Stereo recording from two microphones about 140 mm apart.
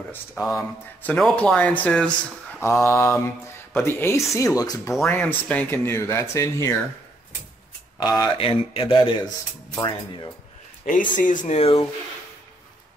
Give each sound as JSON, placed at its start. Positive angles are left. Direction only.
{"t": 0.4, "sound": "speech", "side_deg": 0}
{"t": 2.6, "sound": "speech", "side_deg": 20}
{"t": 5.1, "sound": "speech", "side_deg": 10}
{"t": 8.0, "sound": "speech", "side_deg": 25}
{"t": 8.4, "sound": "speech", "side_deg": 40}
{"t": 11.1, "sound": "speech", "side_deg": 70}